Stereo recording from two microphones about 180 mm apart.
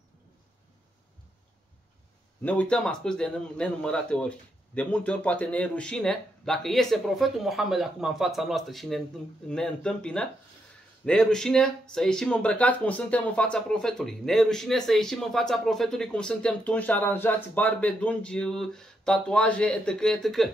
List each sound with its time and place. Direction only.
2.4 s speech: 10° left (ahead or behind)